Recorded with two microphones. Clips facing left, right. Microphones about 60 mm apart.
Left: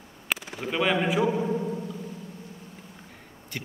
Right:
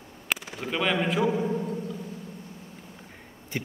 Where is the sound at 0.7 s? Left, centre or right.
Centre.